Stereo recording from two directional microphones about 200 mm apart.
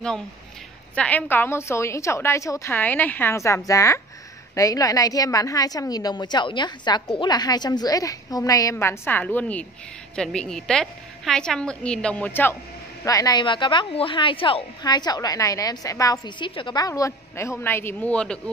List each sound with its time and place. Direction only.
0.9 s a woman's voice: 5° left (ahead or behind)